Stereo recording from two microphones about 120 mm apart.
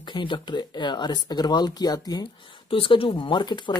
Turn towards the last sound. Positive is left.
turn(degrees=40)  # may be behind; listen again after turning